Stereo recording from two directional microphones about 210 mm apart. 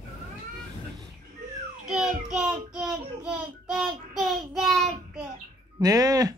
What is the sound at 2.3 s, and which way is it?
Child singing, 5° right (ahead or behind).